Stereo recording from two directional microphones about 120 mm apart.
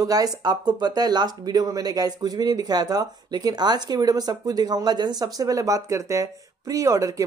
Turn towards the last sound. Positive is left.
turn(degrees=-25)  # may be behind; listen again after turning